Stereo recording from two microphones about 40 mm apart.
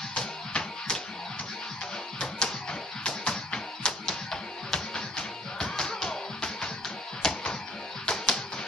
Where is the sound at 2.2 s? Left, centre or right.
Centre.